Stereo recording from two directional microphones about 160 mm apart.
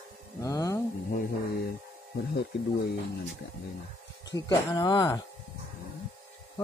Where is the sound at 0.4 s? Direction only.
20° left (ahead or behind).